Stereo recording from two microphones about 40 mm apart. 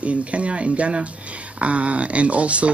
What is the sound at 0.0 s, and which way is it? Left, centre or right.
Speech, right.